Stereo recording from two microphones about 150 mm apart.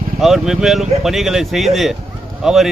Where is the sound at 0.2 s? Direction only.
Centre (ahead or behind).